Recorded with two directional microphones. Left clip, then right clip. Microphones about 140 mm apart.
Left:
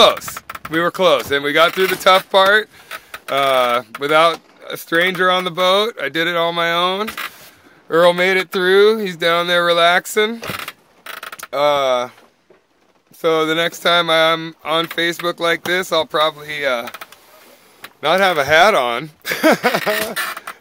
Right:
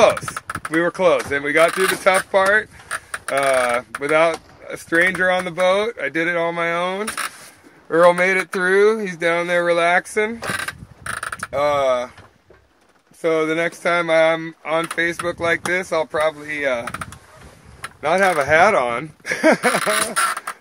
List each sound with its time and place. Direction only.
0.7 s speech: 40° left (ahead or behind)
4.7 s speech: 25° left (ahead or behind)
5.2 s speech: 50° left (ahead or behind)
7.9 s speech: 30° left (ahead or behind)
9.2 s speech: 45° left (ahead or behind)
11.5 s speech: 55° left (ahead or behind)
13.2 s speech: 50° left (ahead or behind)
18.0 s speech: 40° left (ahead or behind)
19.5 s speech: 25° left (ahead or behind)